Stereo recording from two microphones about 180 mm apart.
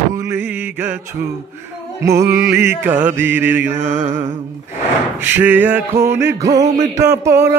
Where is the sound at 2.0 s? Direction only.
15° right (ahead or behind).